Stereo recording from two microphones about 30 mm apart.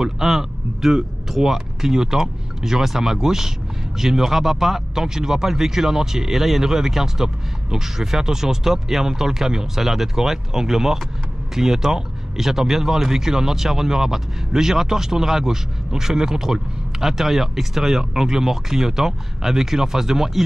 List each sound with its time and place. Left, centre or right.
0.0 s speech: centre
1.3 s speech: centre
1.8 s speech: centre